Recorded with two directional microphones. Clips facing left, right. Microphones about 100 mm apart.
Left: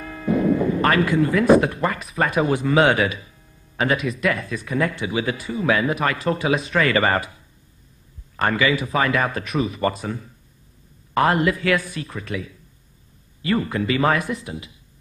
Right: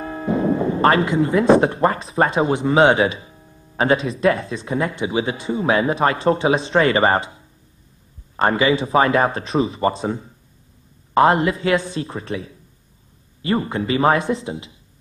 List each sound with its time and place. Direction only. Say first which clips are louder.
0.0 s speech: even; 30° right (ahead or behind)